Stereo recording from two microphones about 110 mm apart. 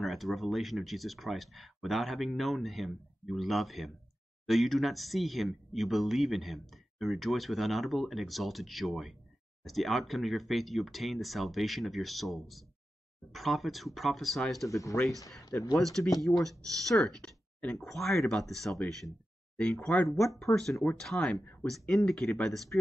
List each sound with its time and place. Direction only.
0.0 s speech: centre (ahead or behind)
14.7 s speech: 30° left (ahead or behind)
16.0 s speech: 10° left (ahead or behind)
20.8 s speech: 5° left (ahead or behind)